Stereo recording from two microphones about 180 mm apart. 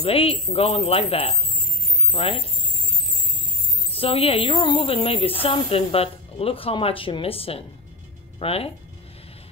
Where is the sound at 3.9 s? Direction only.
30° left (ahead or behind).